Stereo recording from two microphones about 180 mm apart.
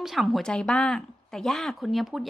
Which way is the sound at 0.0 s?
Centre (ahead or behind).